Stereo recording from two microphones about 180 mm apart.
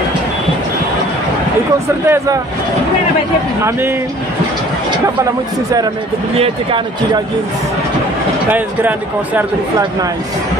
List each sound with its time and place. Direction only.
2.0 s speech: 20° right (ahead or behind)
6.3 s speech: 35° right (ahead or behind)
8.5 s speech: 10° right (ahead or behind)